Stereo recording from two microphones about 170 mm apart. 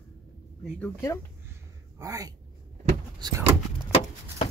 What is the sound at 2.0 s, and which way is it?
Speech, 20° right (ahead or behind).